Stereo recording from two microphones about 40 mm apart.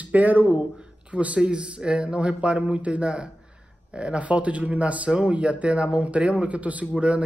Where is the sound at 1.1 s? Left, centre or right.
Right.